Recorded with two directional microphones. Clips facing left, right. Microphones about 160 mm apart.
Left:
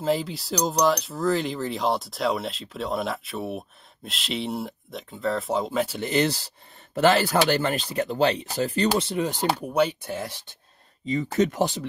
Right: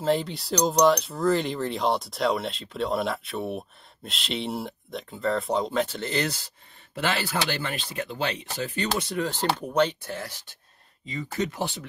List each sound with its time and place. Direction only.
0.0 s speech: centre (ahead or behind)
6.2 s speech: 30° left (ahead or behind); by 10.3 s 15° left (ahead or behind)
11.1 s speech: 45° left (ahead or behind)